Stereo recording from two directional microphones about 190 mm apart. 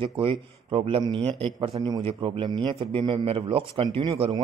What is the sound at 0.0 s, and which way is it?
A man's voice, 30° right (ahead or behind).